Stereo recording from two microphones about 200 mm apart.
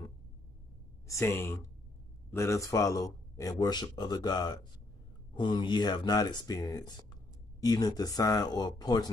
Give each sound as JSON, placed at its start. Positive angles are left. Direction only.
{"t": 1.0, "sound": "a man's voice", "side_deg": 15}